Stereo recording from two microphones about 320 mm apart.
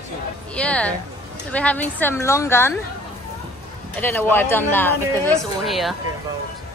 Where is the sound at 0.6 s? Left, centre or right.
Centre.